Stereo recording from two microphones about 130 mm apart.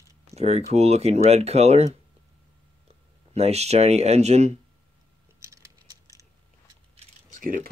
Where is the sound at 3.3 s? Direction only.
55° right (ahead or behind).